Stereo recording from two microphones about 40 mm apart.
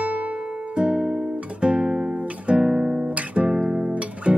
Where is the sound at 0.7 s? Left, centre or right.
Right.